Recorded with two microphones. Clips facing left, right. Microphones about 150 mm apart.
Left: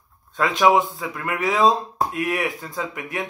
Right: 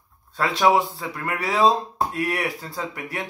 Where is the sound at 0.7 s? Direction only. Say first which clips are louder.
Left 1 dB; 35° right (ahead or behind).